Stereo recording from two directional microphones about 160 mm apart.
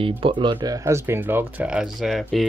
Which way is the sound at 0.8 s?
15° right (ahead or behind).